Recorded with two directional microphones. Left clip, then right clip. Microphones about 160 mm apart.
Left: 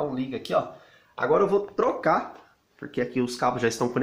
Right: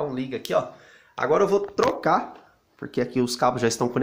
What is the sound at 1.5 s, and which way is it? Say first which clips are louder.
Speech: right 2 dB; 25° right (ahead or behind).